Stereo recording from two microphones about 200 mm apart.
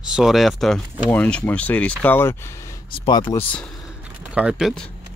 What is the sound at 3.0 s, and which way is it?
Speech, 25° left (ahead or behind).